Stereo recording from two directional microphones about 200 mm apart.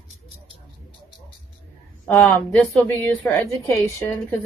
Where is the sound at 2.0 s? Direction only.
10° left (ahead or behind).